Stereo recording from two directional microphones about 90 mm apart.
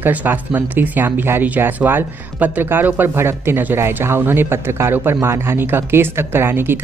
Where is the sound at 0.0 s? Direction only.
20° right (ahead or behind).